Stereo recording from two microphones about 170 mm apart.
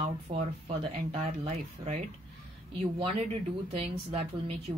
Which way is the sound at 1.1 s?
40° right (ahead or behind).